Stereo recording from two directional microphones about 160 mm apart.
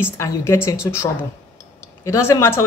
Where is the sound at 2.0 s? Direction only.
20° left (ahead or behind).